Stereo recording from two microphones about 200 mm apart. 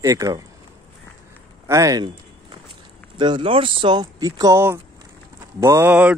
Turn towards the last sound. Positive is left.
turn(degrees=-10)  # may be behind; listen again after turning